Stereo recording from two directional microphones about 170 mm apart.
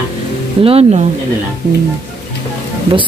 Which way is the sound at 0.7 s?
35° right (ahead or behind).